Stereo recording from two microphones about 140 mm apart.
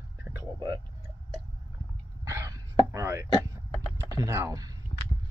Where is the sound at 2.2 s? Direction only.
20° right (ahead or behind).